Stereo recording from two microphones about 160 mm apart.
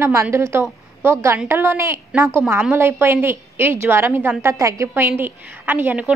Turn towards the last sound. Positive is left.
turn(degrees=-10)  # may be behind; listen again after turning